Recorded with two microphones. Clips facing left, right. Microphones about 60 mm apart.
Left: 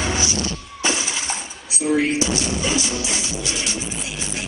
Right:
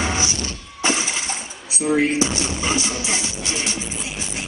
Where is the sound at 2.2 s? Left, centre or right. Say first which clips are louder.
Even; right.